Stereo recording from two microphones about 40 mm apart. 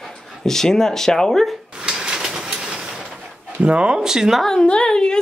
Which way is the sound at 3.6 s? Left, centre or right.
Right.